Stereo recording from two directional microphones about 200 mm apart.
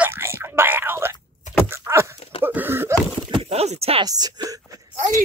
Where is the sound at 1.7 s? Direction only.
15° right (ahead or behind).